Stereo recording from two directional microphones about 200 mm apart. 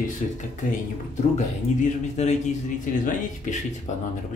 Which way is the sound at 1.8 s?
35° left (ahead or behind).